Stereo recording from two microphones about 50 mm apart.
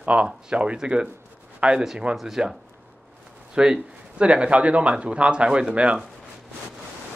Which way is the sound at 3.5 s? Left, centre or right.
Centre.